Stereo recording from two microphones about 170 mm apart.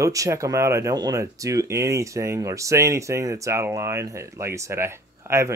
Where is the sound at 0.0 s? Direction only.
20° right (ahead or behind).